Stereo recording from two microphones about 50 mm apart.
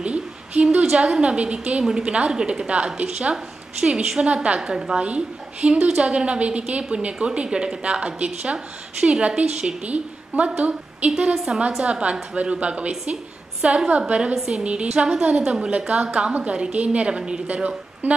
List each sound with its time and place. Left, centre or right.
0.0 s a woman's voice: right
11.3 s a woman's voice: centre
11.8 s a woman's voice: right